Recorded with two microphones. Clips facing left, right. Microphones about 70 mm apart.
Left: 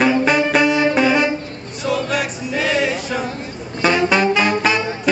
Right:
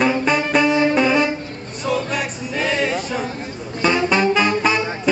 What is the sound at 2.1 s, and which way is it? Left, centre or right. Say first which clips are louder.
Music: left 2 dB; centre.